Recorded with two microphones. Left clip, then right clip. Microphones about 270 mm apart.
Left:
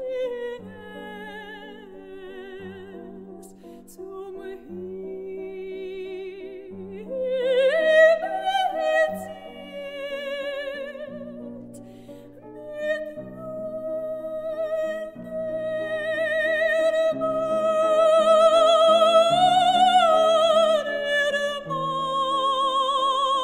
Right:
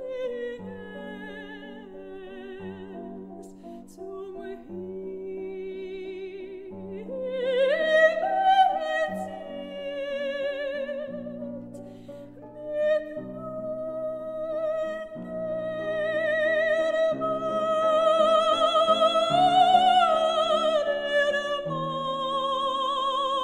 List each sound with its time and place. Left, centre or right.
0.0 s music: left
5.2 s music: left
12.7 s music: left